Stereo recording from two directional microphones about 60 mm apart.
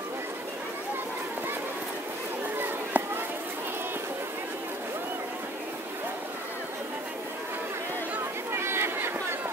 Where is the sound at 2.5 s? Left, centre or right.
Right.